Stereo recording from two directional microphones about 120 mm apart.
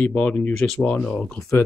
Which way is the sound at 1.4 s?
25° left (ahead or behind).